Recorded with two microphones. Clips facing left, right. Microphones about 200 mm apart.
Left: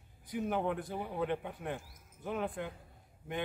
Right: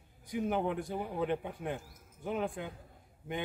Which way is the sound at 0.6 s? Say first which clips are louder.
Right 1 dB; centre (ahead or behind).